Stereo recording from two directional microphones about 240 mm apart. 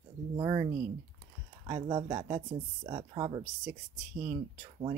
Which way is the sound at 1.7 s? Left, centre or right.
Centre.